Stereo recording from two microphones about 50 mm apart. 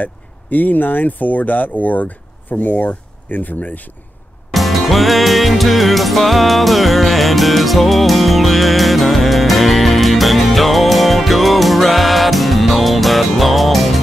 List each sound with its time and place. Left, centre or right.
0.0 s speech: left
4.5 s music: centre